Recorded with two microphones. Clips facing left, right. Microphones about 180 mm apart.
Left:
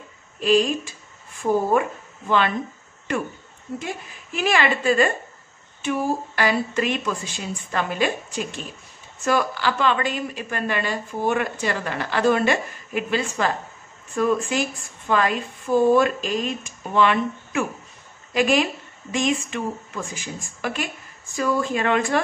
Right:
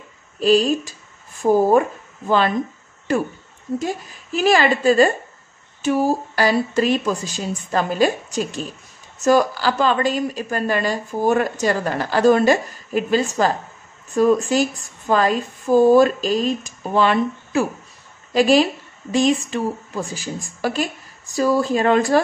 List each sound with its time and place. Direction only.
0.4 s speech: 35° right (ahead or behind)
3.8 s speech: 40° right (ahead or behind)